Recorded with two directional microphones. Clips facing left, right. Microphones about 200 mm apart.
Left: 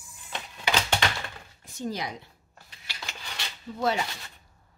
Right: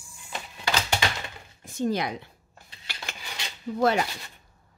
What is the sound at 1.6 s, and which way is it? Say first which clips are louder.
Speech: right 6 dB; 60° right (ahead or behind).